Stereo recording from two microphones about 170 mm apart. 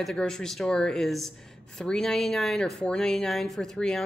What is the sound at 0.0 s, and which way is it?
Speech, 5° left (ahead or behind).